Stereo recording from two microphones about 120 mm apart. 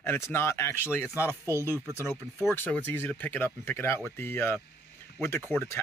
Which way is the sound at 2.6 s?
15° left (ahead or behind).